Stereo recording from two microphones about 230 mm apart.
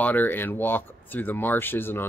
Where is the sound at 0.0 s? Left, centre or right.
Centre.